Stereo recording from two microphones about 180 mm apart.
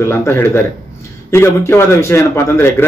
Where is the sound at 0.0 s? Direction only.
15° left (ahead or behind).